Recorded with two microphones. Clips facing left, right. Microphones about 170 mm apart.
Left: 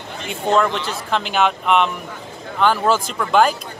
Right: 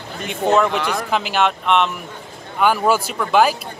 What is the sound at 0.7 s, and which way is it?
Speech, 75° right (ahead or behind).